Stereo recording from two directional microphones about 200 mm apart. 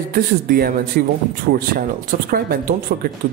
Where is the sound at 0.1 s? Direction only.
45° right (ahead or behind).